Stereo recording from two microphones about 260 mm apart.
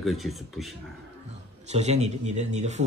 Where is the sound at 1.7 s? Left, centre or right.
Right.